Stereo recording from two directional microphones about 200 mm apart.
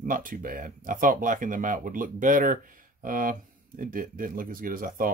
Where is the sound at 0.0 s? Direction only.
40° right (ahead or behind).